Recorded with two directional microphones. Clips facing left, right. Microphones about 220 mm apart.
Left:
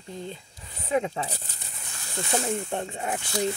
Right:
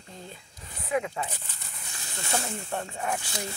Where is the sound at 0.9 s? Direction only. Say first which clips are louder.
Left 3 dB; 30° left (ahead or behind).